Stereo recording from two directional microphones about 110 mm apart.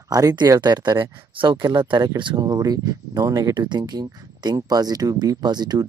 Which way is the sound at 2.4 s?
35° right (ahead or behind).